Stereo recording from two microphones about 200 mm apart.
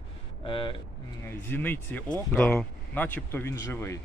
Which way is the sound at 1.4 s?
10° left (ahead or behind).